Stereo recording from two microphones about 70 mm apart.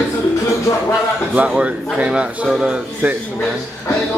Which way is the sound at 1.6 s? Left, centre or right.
Centre.